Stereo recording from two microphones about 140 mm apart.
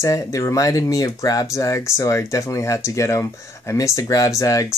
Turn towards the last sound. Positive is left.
turn(degrees=25)  # may be behind; listen again after turning